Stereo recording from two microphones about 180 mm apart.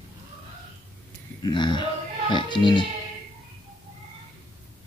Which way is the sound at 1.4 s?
25° left (ahead or behind).